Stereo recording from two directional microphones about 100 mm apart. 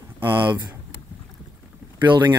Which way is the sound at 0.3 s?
50° right (ahead or behind).